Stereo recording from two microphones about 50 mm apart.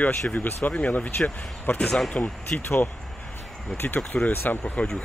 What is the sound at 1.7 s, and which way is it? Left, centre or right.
Speech, left.